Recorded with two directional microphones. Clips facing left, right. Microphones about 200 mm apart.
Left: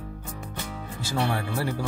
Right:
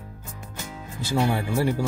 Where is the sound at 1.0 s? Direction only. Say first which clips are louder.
Right 4 dB; 15° right (ahead or behind).